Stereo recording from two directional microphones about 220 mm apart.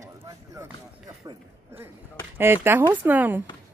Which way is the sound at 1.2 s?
15° right (ahead or behind).